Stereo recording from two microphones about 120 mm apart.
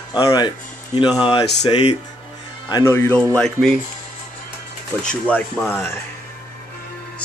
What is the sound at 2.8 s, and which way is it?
Speech, 20° left (ahead or behind).